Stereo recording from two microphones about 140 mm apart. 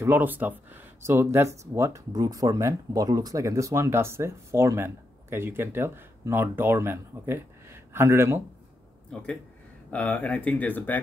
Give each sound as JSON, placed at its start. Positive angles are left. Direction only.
{"t": 0.0, "sound": "speech", "side_deg": -10}
{"t": 9.1, "sound": "speech", "side_deg": 10}